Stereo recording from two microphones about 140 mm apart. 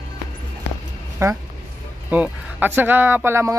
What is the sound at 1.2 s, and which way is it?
Speech, 20° right (ahead or behind).